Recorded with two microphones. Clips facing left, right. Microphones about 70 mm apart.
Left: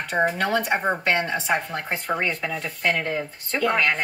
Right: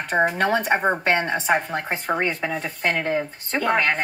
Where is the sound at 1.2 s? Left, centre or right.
Right.